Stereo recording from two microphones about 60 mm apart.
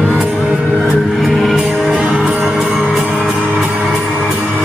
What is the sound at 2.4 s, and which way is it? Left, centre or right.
Music, centre.